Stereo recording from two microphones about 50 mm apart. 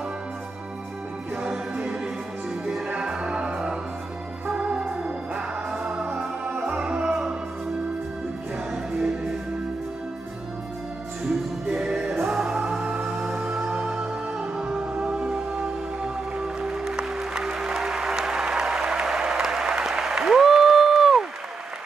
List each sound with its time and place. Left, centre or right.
1.3 s music: centre
3.0 s music: centre
11.6 s music: centre
15.3 s music: centre
20.2 s applause: centre